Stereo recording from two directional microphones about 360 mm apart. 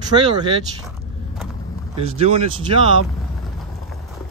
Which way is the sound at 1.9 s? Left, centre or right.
Centre.